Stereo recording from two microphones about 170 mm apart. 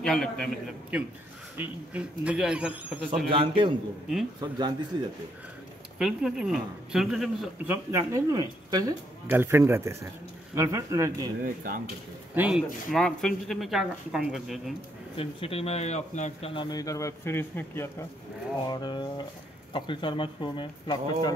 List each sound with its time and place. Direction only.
0.0 s a man's voice: centre (ahead or behind)
3.3 s a man's voice: 30° right (ahead or behind)
5.9 s speech: 5° right (ahead or behind)
7.6 s a man's voice: 10° right (ahead or behind)
8.0 s a man's voice: 25° right (ahead or behind)
11.4 s speech: 55° right (ahead or behind)
12.4 s speech: 5° right (ahead or behind)
15.1 s speech: 35° left (ahead or behind)
16.7 s speech: 20° left (ahead or behind)
18.7 s speech: 25° left (ahead or behind)